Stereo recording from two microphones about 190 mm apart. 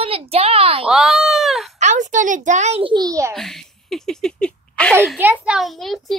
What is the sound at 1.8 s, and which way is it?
A child's voice, 40° right (ahead or behind).